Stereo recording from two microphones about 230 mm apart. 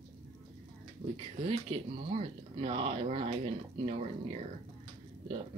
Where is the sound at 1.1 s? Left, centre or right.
Right.